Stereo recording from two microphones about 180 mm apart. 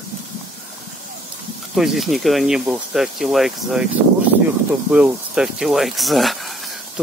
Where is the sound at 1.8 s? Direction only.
Centre (ahead or behind).